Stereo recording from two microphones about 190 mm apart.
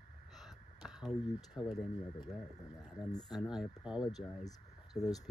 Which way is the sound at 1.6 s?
Centre (ahead or behind).